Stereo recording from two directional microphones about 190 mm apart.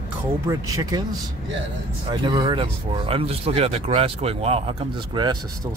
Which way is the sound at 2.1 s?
25° right (ahead or behind).